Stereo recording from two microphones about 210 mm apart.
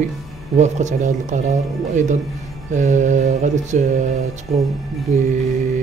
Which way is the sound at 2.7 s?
35° right (ahead or behind).